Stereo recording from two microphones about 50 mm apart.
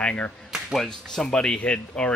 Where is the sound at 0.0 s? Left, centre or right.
Left.